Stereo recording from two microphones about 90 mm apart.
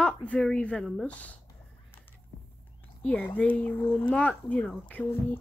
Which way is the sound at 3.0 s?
15° left (ahead or behind).